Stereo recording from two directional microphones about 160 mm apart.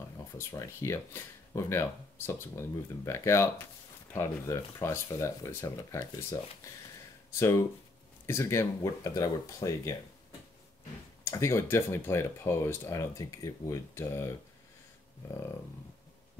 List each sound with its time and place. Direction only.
0.4 s speech: 15° left (ahead or behind)
11.2 s speech: 20° left (ahead or behind)